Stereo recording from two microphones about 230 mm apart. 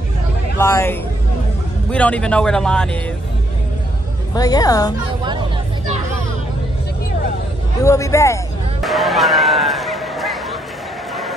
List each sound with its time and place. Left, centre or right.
0.6 s a woman's voice: centre
4.3 s a woman's voice: centre
7.8 s a woman's voice: centre
8.8 s a sound: centre